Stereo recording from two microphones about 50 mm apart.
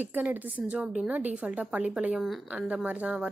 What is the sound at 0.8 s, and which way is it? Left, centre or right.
Speech, centre.